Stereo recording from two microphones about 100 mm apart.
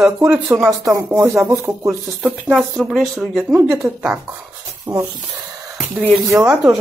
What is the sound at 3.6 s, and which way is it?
Speech, 30° right (ahead or behind).